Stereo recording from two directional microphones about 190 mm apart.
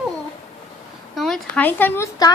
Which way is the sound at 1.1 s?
Centre (ahead or behind).